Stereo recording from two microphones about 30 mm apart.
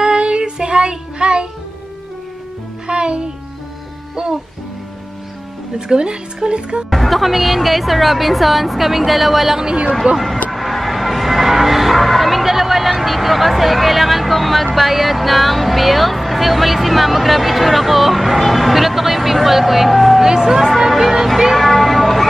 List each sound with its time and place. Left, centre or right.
0.0 s child singing: right
2.9 s music: right
5.8 s speech: right
6.9 s a woman's voice: centre
10.1 s speech: right
10.5 s music: centre
14.8 s speech: centre
20.2 s speech: centre
20.9 s music: centre
21.5 s a sound: centre